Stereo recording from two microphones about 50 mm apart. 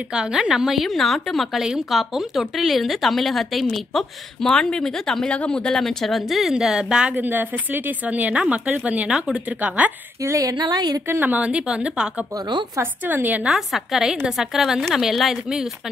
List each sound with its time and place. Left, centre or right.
0.1 s speech: centre
4.5 s speech: centre
5.3 s speech: left; by 6.5 s centre
6.5 s a woman's voice: centre
7.1 s a woman's voice: right
11.2 s a woman's voice: right
13.0 s a woman's voice: right
13.5 s a woman's voice: centre